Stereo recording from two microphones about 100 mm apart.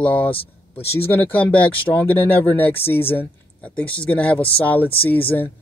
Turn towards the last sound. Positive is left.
turn(degrees=20)  # may be behind; listen again after turning